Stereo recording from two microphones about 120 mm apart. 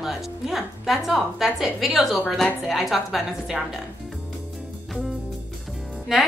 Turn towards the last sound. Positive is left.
turn(degrees=-5)  # may be behind; listen again after turning